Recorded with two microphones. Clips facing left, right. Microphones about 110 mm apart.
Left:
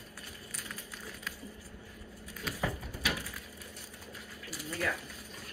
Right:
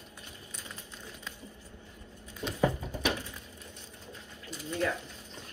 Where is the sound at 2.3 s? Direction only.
25° right (ahead or behind).